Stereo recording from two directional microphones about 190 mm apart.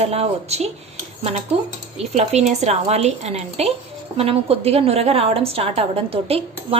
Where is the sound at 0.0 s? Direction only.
35° right (ahead or behind).